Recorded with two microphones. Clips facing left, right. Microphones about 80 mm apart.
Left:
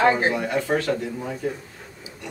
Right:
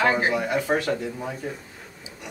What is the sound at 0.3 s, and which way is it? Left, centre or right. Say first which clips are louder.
Speech: even; centre.